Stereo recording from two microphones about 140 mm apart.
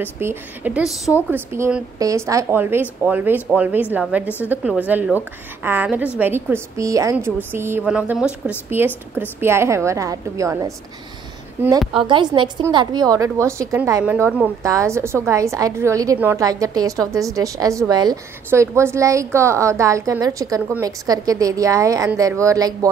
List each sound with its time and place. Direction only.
0.0 s a woman's voice: 15° right (ahead or behind)
1.3 s a woman's voice: 15° right (ahead or behind)
12.0 s a woman's voice: 35° right (ahead or behind)